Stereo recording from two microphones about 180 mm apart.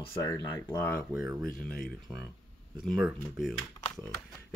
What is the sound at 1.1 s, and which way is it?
Speech, centre (ahead or behind).